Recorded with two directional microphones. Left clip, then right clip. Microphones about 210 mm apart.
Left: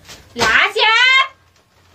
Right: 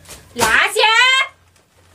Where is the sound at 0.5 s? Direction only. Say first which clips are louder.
Even; centre (ahead or behind).